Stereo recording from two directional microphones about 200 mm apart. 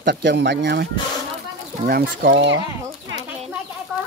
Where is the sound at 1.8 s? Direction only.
50° right (ahead or behind).